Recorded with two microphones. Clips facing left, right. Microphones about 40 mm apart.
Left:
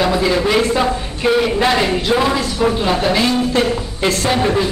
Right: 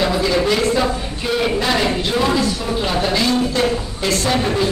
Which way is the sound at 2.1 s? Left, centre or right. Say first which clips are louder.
Even; centre.